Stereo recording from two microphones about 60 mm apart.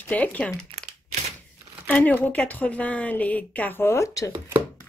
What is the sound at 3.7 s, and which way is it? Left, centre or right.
Speech, left.